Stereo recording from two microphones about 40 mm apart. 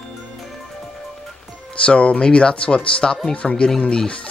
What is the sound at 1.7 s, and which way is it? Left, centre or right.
Speech, left.